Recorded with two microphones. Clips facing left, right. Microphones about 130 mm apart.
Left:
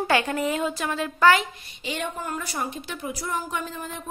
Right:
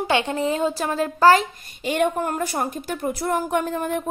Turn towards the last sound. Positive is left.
turn(degrees=-55)  # may be behind; listen again after turning